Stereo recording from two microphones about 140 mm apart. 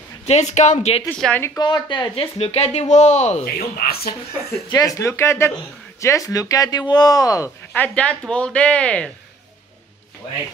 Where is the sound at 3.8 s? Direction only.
90° left.